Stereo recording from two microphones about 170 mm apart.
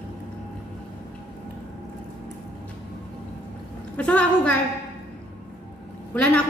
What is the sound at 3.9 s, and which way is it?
Speech, 10° left (ahead or behind).